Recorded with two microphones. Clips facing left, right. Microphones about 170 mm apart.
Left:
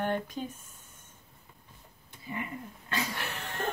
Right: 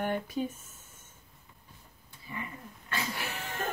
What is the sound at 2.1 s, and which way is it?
Dog, 20° left (ahead or behind).